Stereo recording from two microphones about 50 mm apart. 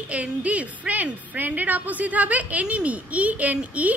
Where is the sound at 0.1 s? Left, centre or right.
Right.